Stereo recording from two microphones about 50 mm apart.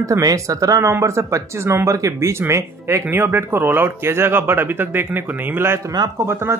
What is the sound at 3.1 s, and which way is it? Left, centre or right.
A man's voice, right.